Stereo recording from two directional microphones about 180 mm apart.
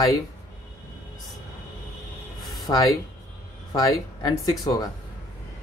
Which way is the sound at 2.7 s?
20° left (ahead or behind).